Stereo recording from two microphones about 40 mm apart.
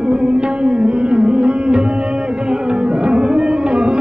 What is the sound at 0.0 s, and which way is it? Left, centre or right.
Music, centre.